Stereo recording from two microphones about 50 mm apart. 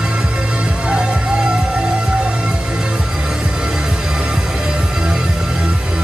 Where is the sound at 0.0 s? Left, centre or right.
Right.